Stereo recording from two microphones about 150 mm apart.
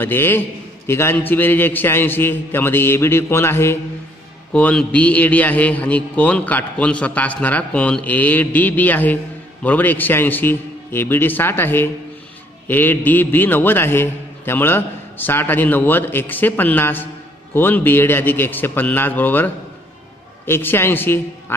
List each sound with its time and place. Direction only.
0.0 s a man's voice: 15° left (ahead or behind)